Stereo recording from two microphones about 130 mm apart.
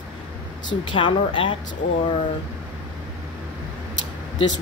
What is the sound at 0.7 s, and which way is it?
Speech, 40° left (ahead or behind).